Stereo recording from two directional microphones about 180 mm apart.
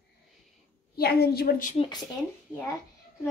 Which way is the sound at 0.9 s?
60° left (ahead or behind).